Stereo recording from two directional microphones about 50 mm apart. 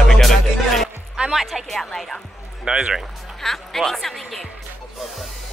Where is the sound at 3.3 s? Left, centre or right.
Centre.